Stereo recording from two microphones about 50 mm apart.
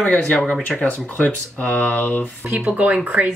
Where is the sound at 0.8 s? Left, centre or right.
Left.